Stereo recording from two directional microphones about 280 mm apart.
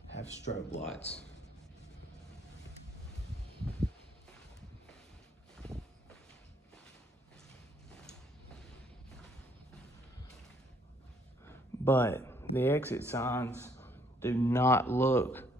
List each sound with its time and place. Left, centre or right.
0.1 s speech: left
11.4 s a sound: centre
13.1 s speech: centre